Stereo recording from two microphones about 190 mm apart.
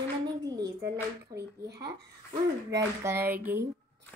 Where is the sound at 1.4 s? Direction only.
60° right (ahead or behind).